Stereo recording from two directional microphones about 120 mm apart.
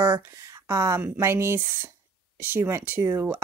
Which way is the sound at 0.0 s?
25° right (ahead or behind).